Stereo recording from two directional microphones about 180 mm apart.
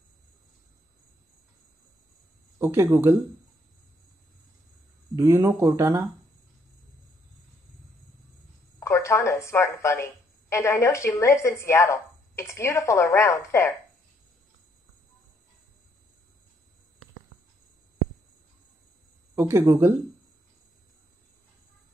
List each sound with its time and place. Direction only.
2.6 s speech: 15° right (ahead or behind)
5.1 s speech: 15° right (ahead or behind)
8.7 s a woman's voice: 15° left (ahead or behind)
19.3 s speech: 15° right (ahead or behind)